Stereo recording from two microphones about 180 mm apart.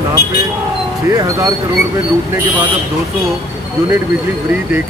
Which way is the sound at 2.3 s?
10° right (ahead or behind).